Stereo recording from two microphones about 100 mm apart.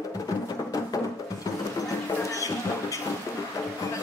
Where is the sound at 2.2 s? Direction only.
35° left (ahead or behind).